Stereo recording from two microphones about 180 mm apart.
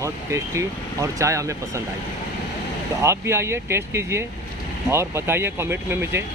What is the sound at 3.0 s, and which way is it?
Speech, 15° right (ahead or behind).